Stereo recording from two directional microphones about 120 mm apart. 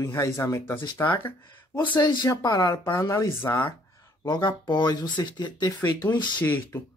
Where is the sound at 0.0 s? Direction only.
25° left (ahead or behind).